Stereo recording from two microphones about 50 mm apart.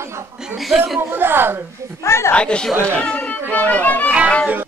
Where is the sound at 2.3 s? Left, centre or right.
Left.